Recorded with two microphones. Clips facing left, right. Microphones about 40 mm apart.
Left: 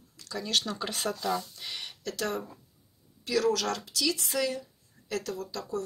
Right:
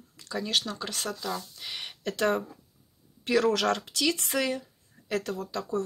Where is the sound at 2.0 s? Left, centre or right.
Right.